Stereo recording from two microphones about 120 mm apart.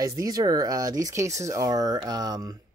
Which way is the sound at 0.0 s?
30° right (ahead or behind).